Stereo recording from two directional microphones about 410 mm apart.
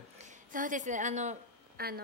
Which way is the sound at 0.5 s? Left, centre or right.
Centre.